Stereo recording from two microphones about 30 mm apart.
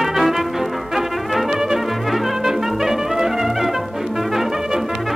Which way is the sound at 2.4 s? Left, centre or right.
Centre.